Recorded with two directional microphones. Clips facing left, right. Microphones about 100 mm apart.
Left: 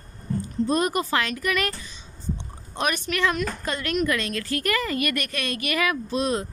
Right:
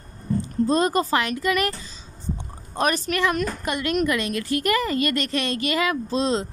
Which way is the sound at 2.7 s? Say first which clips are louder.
Right 3 dB; 35° right (ahead or behind).